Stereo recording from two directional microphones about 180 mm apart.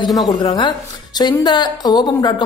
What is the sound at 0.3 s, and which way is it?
Speech, 25° left (ahead or behind).